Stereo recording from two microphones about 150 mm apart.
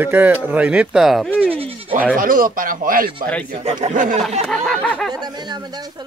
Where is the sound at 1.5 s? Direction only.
40° right (ahead or behind).